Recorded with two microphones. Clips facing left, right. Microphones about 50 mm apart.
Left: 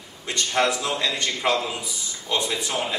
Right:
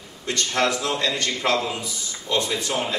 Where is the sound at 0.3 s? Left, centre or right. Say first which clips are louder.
Even; centre.